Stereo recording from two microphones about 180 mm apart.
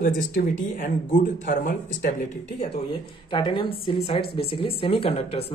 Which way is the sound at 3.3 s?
25° left (ahead or behind).